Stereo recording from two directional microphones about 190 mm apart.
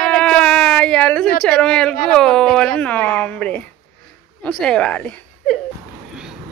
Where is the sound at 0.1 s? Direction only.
5° left (ahead or behind).